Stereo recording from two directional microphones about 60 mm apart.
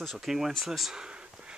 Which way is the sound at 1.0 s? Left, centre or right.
Centre.